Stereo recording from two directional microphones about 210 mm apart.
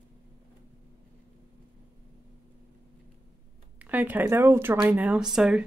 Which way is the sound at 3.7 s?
5° right (ahead or behind).